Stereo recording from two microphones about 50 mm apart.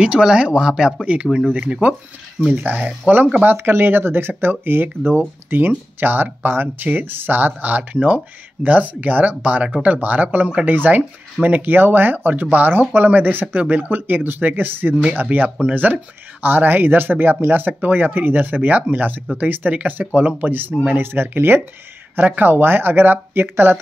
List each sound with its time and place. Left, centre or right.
0.0 s speech: centre; by 3.3 s right
3.5 s speech: right